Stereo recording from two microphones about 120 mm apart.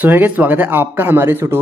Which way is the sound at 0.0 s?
15° right (ahead or behind).